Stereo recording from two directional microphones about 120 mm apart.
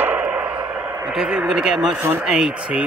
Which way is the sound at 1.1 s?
5° right (ahead or behind).